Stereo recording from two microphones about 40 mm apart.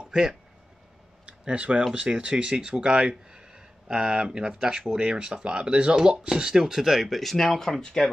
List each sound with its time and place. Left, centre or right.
0.0 s speech: centre
1.2 s speech: right; by 8.0 s centre